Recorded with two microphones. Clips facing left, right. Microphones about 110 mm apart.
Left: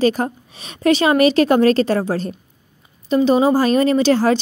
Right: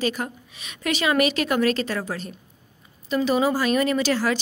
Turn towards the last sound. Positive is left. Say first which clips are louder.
# left 8 dB
turn(degrees=30)  # may be behind; listen again after turning